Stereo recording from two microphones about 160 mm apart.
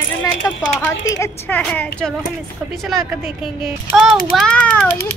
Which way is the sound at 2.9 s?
Centre (ahead or behind).